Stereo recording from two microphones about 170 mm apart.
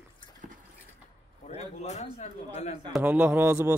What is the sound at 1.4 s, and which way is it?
A man's voice, 40° left (ahead or behind).